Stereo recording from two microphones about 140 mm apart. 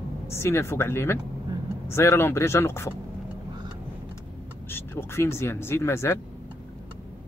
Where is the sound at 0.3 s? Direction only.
20° left (ahead or behind).